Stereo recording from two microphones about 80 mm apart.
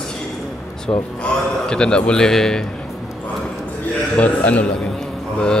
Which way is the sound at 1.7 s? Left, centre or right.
Centre.